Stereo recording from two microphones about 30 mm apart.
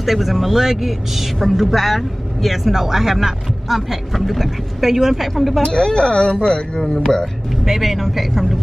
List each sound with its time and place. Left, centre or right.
0.0 s speech: centre
5.3 s speech: centre
5.7 s speech: left
7.6 s speech: centre